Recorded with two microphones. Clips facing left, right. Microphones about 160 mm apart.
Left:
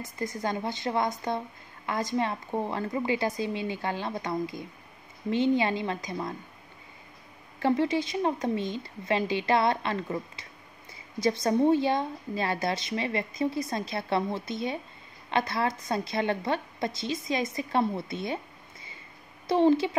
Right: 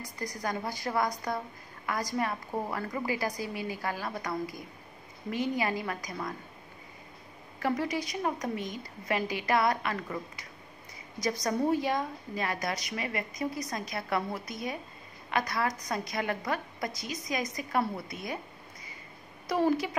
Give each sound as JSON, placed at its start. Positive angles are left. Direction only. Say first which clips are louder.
{"t": 0.0, "sound": "a woman's voice", "louder": "left 4 dB", "side_deg": 25}
{"t": 7.6, "sound": "a woman's voice", "louder": "left 5 dB", "side_deg": 25}
{"t": 19.4, "sound": "a woman's voice", "louder": "left 5 dB", "side_deg": 25}